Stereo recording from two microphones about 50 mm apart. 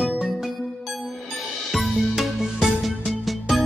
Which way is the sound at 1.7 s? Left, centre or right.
Centre.